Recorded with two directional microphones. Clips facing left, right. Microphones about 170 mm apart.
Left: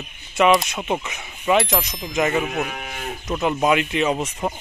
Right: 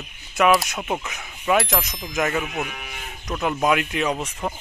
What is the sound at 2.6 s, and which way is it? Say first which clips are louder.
Moo: left 3 dB; 45° left (ahead or behind).